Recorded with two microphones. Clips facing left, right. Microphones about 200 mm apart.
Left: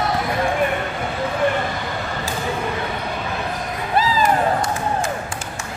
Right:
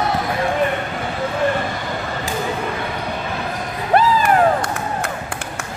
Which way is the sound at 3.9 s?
60° right (ahead or behind).